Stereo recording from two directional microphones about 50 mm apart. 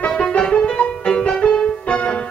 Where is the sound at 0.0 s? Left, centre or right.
Left.